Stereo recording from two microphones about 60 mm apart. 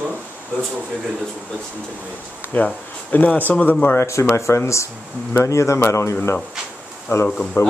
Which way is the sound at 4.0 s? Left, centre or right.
Left.